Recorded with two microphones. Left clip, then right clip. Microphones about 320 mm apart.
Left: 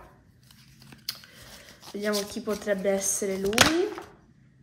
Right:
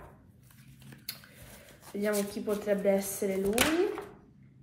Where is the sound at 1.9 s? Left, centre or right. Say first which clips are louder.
Left 2 dB; left.